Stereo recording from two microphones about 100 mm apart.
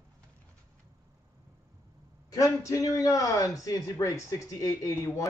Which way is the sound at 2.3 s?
35° left (ahead or behind).